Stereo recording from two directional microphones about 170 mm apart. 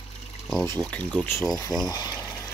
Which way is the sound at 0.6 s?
10° left (ahead or behind).